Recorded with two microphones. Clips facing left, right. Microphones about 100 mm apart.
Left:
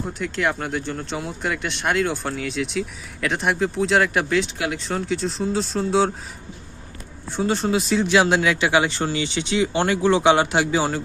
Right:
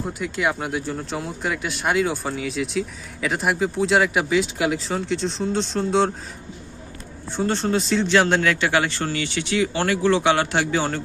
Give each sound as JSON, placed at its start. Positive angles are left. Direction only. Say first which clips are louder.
{"t": 0.0, "sound": "speech", "louder": "even", "side_deg": -5}
{"t": 7.3, "sound": "speech", "louder": "left 1 dB", "side_deg": 5}